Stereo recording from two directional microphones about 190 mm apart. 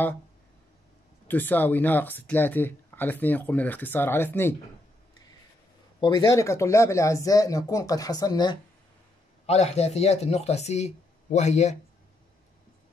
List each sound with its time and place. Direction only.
1.2 s speech: 10° left (ahead or behind)
5.9 s speech: 25° left (ahead or behind)
9.5 s speech: 35° left (ahead or behind)